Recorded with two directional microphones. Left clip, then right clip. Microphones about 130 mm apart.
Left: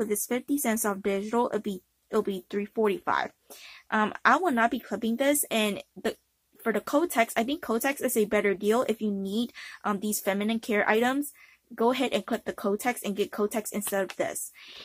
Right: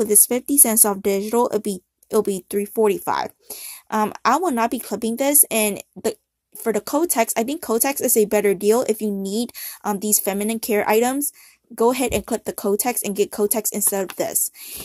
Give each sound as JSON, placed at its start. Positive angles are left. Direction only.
{"t": 0.0, "sound": "speech", "side_deg": -45}